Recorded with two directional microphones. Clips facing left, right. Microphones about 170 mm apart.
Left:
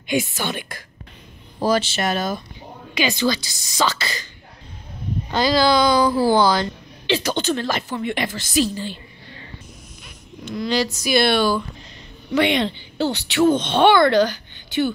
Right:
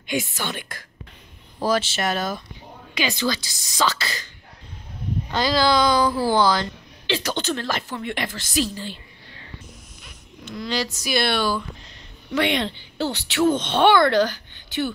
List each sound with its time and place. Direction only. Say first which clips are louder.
0.0 s a woman's voice: left 4 dB; 10° left (ahead or behind)
1.6 s speech: left 2 dB; centre (ahead or behind)
5.3 s a woman's voice: left 3 dB; 10° left (ahead or behind)
10.4 s a woman's voice: left 5 dB; 15° left (ahead or behind)
12.4 s speech: left 3 dB; centre (ahead or behind)